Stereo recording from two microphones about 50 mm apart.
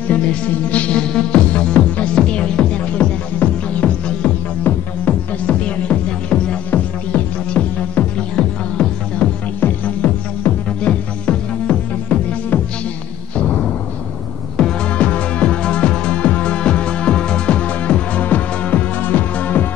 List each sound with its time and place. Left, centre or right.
0.1 s music: left
2.8 s music: left
6.7 s music: left
7.5 s music: centre
9.6 s music: left
13.4 s music: left
15.0 s music: left